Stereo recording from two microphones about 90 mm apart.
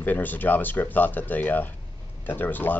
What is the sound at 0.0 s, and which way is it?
Speech, 20° left (ahead or behind).